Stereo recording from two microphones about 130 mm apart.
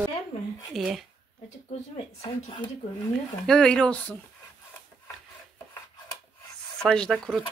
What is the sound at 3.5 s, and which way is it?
Speech, 5° left (ahead or behind).